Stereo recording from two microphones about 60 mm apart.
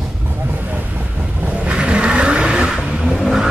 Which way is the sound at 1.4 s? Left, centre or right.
Centre.